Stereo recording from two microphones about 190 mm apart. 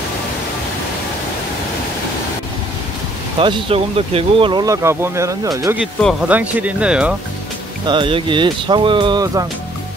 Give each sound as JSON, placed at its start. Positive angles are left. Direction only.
{"t": 3.3, "sound": "speech", "side_deg": -30}
{"t": 7.8, "sound": "speech", "side_deg": -25}